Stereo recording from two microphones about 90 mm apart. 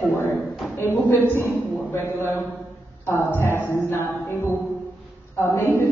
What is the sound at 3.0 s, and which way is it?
A woman's voice, 25° left (ahead or behind).